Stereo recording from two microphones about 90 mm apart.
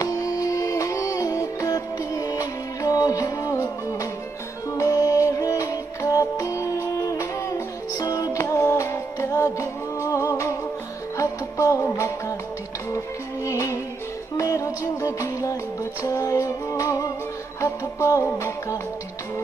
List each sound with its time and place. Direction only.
0.0 s music: 40° left (ahead or behind)